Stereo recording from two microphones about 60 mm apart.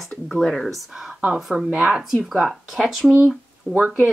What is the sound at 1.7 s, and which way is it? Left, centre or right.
Speech, centre.